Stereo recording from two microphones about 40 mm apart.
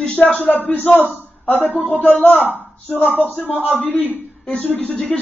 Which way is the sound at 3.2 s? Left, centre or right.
Left.